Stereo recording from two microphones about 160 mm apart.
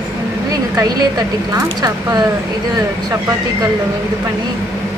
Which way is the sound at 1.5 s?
25° right (ahead or behind).